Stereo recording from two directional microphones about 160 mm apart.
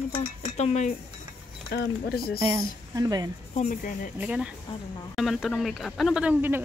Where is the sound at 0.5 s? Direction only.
45° left (ahead or behind).